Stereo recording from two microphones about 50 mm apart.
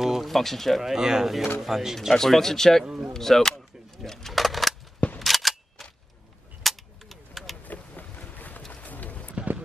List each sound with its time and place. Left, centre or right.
0.0 s speech: centre
0.9 s speech: centre
2.1 s speech: centre
2.8 s speech: centre
3.1 s a sound: centre
7.6 s boat: left
8.8 s horse: left
9.3 s a sound: right